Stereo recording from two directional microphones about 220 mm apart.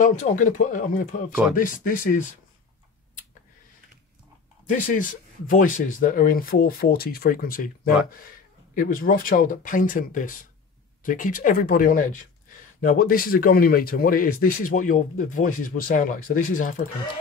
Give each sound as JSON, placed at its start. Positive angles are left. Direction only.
{"t": 0.0, "sound": "speech", "side_deg": 35}
{"t": 4.7, "sound": "speech", "side_deg": 35}